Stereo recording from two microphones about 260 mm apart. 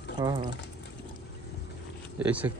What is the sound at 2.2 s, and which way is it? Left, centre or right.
Speech, centre.